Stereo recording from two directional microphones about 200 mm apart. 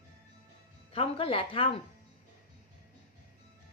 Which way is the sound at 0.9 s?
30° left (ahead or behind).